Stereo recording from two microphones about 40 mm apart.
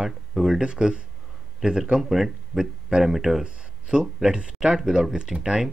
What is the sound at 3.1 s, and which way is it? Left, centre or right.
Speech, centre.